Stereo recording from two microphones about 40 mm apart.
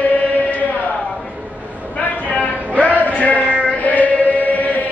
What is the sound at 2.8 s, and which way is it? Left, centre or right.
Chant, left.